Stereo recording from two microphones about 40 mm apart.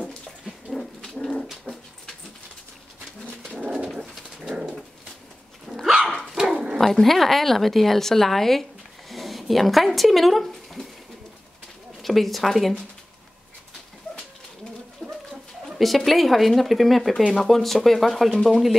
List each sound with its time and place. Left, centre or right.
0.7 s dog: centre
1.7 s dog: left
3.6 s dog: right
5.9 s dog: centre
6.5 s dog: centre
6.8 s a woman's voice: centre
9.1 s a sound: centre
12.0 s speech: centre
15.0 s dog: left
16.1 s a woman's voice: centre